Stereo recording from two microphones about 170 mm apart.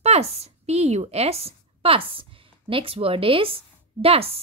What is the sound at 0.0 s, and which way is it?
A woman's voice, 35° right (ahead or behind).